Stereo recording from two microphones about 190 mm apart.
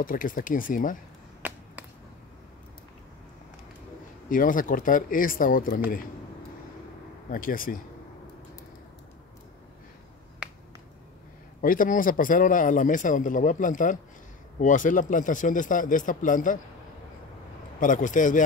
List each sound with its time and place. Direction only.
0.0 s a man's voice: 45° left (ahead or behind)
1.4 s finger snapping: 10° right (ahead or behind)
4.3 s a man's voice: 45° left (ahead or behind)
7.2 s a man's voice: 50° left (ahead or behind)
11.6 s a man's voice: 45° left (ahead or behind)
17.7 s a man's voice: 45° left (ahead or behind)